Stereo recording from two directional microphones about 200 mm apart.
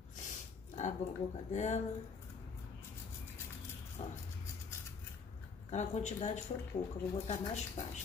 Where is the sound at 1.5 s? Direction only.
35° left (ahead or behind).